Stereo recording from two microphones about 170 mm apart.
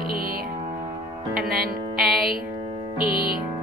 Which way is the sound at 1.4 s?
60° right (ahead or behind).